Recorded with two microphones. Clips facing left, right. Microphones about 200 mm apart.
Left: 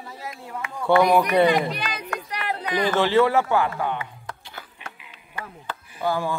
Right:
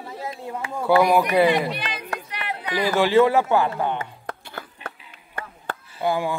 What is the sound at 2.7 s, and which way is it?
A man's voice, 10° right (ahead or behind).